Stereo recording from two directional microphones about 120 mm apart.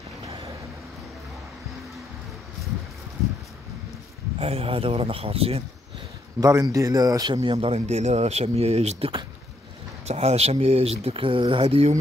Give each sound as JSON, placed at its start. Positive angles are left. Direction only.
{"t": 4.4, "sound": "speech", "side_deg": -55}
{"t": 6.4, "sound": "a man's voice", "side_deg": -25}
{"t": 7.5, "sound": "speech", "side_deg": -60}